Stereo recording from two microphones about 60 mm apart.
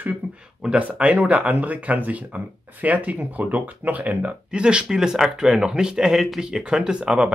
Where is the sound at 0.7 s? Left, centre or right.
Right.